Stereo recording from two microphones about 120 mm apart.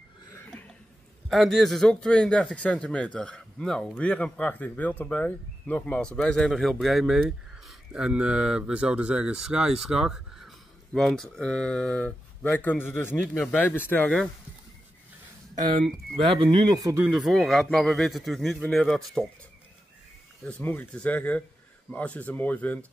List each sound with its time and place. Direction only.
0.5 s a sound: 5° left (ahead or behind)
1.3 s speech: centre (ahead or behind)
16.3 s speech: 40° right (ahead or behind)
17.0 s speech: 5° right (ahead or behind)
20.4 s speech: 10° left (ahead or behind)